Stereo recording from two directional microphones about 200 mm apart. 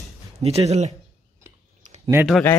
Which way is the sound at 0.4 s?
30° right (ahead or behind).